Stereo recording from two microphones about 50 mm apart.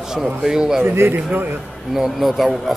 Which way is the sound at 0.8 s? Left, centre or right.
Right.